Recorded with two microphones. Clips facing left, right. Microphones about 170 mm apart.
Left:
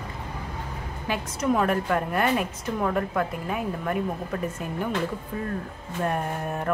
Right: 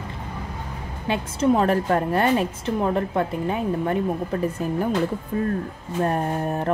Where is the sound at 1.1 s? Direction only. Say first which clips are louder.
Right 5 dB; 30° right (ahead or behind).